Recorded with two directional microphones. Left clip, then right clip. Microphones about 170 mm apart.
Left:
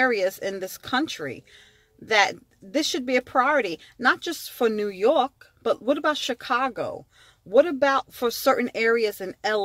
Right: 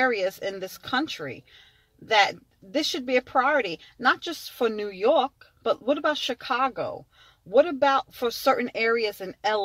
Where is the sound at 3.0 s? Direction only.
30° left (ahead or behind).